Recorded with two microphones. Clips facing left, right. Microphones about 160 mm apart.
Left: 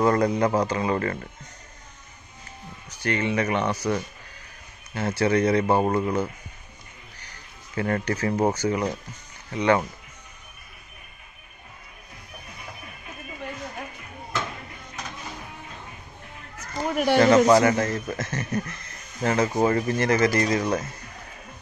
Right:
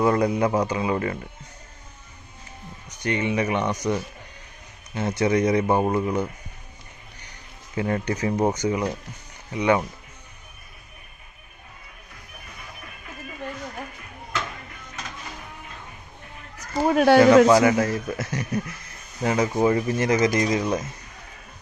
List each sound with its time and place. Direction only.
0.0 s speech: 10° right (ahead or behind)
2.9 s speech: 15° right (ahead or behind)
5.9 s speech: centre (ahead or behind)
7.7 s speech: 15° right (ahead or behind)
16.9 s speech: 90° right
17.5 s speech: 10° right (ahead or behind)